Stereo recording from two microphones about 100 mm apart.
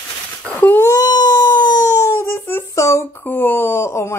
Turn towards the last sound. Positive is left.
turn(degrees=25)  # may be behind; listen again after turning